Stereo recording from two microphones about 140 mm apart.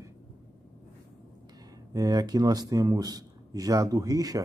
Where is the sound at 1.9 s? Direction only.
30° right (ahead or behind).